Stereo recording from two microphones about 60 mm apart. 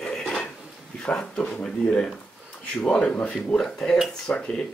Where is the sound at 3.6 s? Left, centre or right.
Centre.